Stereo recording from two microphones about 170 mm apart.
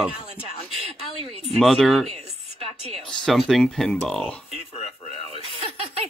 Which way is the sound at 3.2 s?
Centre (ahead or behind).